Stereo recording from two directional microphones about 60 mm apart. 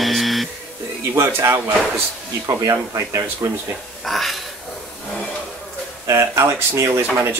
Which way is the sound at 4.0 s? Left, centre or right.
Centre.